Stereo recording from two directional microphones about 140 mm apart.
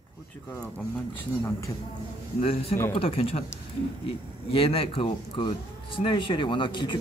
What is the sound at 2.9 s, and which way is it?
Speech, 40° left (ahead or behind).